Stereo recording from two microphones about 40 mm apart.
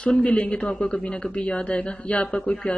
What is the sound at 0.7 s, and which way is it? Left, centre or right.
Speech, centre.